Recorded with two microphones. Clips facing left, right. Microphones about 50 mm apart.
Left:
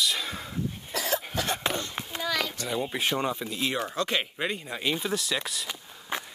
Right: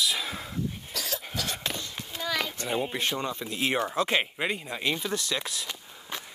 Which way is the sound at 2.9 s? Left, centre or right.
Centre.